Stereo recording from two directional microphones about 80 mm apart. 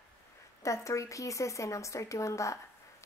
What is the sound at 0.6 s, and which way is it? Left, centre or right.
Speech, left.